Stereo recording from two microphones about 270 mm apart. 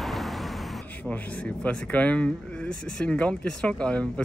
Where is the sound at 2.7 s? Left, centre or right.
Right.